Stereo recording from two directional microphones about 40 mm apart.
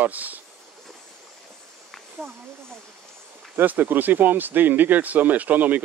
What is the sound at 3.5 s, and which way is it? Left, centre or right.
Speech, right.